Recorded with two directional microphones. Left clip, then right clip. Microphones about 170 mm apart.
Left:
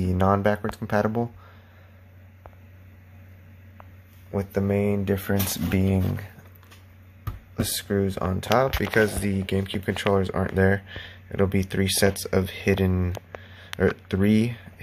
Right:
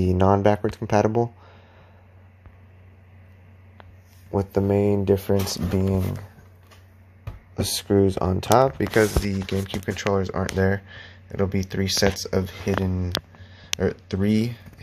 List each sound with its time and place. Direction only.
0.2 s speech: 20° right (ahead or behind)
4.3 s speech: 15° right (ahead or behind)
5.7 s speech: centre (ahead or behind)
7.5 s speech: 20° right (ahead or behind); by 14.7 s centre (ahead or behind)